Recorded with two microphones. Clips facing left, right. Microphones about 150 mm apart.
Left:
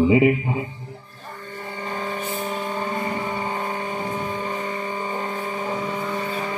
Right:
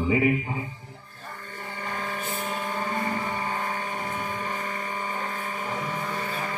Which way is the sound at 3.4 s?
25° left (ahead or behind).